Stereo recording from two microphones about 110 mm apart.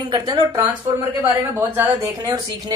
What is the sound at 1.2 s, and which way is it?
A woman's voice, 20° right (ahead or behind).